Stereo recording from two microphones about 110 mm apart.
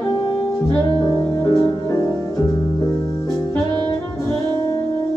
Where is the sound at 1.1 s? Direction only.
25° left (ahead or behind).